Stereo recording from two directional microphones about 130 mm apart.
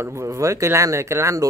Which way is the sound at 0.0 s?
20° right (ahead or behind).